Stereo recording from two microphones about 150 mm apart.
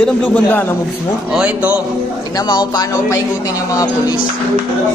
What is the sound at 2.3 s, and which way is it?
Speech, 30° left (ahead or behind).